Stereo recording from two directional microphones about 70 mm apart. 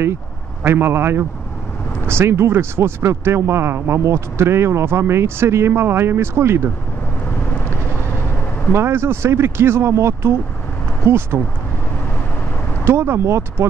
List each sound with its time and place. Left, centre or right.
0.7 s speech: right
7.2 s vehicle: left
8.7 s speech: right
12.8 s speech: right